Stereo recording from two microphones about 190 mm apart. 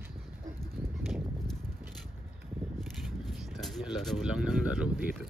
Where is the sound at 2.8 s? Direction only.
Centre (ahead or behind).